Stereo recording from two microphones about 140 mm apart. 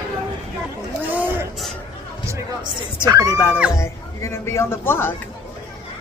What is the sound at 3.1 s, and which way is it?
Speech, 25° right (ahead or behind).